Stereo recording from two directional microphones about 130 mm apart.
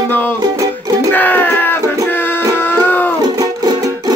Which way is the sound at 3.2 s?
30° right (ahead or behind).